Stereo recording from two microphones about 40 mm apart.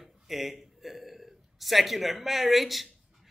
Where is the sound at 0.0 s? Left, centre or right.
Centre.